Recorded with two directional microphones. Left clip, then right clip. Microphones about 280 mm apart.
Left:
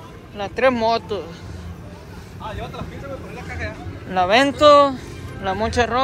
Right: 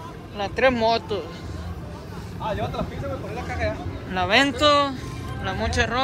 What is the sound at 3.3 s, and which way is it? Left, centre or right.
Vehicle, right.